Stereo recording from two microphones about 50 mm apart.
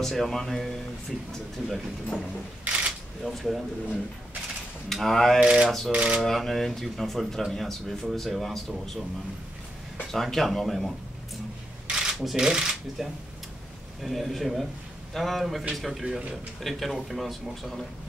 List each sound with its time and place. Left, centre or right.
0.0 s speech: centre
2.6 s camera: right
3.3 s speech: centre
5.4 s speech: centre
6.2 s speech: centre
10.1 s speech: centre
11.9 s camera: centre
12.2 s speech: centre
14.0 s speech: centre